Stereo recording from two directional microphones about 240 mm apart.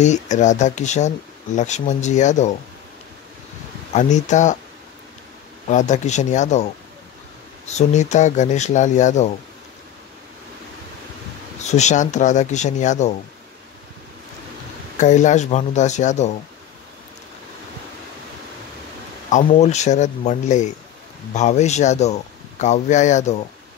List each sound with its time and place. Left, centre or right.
0.0 s speech: left
3.9 s speech: left
5.7 s speech: left
11.6 s speech: left
15.0 s speech: left
19.3 s speech: left